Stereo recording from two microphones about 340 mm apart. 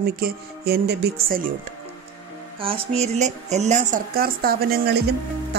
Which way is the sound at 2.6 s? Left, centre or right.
Centre.